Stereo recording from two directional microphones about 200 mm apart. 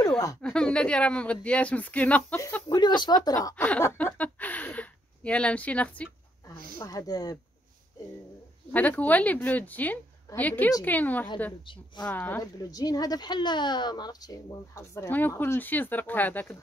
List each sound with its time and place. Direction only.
0.4 s speech: 5° left (ahead or behind)
2.7 s speech: 20° left (ahead or behind)
6.8 s speech: 20° left (ahead or behind)
8.7 s speech: 10° left (ahead or behind)